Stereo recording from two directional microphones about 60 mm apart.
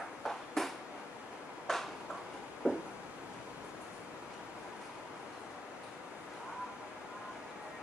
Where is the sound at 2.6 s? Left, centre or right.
Centre.